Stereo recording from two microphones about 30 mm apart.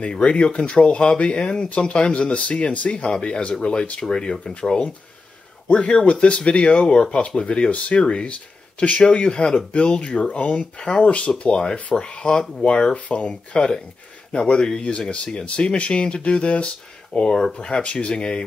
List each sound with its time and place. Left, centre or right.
0.0 s speech: left
5.7 s speech: left
8.0 s speech: left
9.0 s speech: left
12.9 s speech: left
17.5 s speech: left